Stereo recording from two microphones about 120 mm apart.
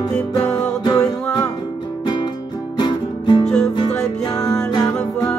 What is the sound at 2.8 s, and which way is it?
Music, 40° left (ahead or behind).